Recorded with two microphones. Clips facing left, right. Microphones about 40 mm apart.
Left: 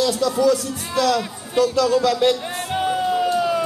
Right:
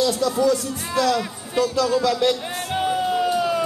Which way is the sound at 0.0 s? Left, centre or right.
Centre.